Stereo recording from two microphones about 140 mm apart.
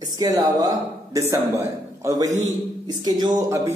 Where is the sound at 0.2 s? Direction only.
25° right (ahead or behind).